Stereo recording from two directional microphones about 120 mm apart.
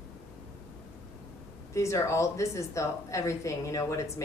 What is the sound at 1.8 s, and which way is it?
A woman's voice, 25° left (ahead or behind).